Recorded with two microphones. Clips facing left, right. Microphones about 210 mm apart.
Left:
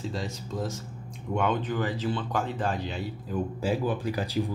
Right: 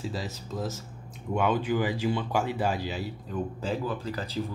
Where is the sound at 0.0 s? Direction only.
5° right (ahead or behind).